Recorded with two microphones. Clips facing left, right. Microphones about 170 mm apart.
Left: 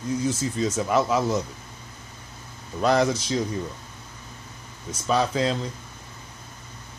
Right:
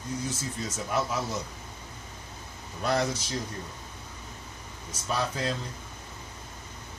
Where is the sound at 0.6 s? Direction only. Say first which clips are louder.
Left 7 dB; 90° left.